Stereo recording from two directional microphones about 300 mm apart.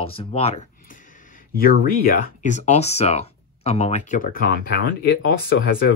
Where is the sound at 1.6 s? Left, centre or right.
Left.